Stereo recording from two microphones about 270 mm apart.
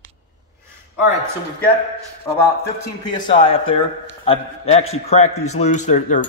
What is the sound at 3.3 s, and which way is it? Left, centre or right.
A man's voice, centre.